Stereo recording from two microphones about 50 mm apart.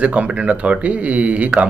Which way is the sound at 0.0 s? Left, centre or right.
Right.